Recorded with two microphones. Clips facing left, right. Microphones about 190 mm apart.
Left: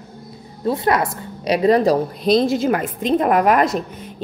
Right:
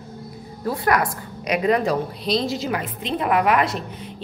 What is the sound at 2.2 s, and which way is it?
A woman's voice, 50° left (ahead or behind).